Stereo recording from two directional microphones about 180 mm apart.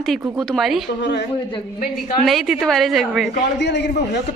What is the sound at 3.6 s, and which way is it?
Speech, 70° left (ahead or behind).